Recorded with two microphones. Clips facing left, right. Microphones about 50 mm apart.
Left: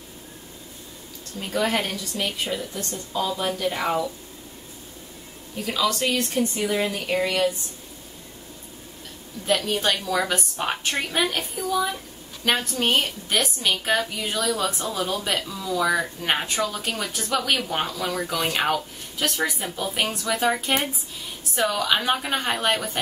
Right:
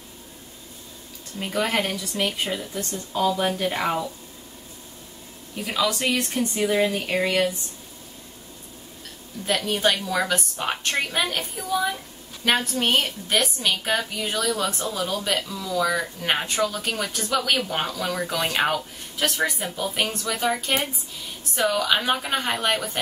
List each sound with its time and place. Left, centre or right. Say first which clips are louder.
1.4 s speech: even; centre
5.7 s speech: even; centre
9.5 s speech: even; centre
10.2 s speech: even; centre
12.4 s speech: right 1 dB; centre
21.5 s speech: right 1 dB; centre